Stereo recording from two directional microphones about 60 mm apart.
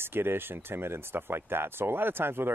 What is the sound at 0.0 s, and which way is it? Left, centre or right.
Speech, right.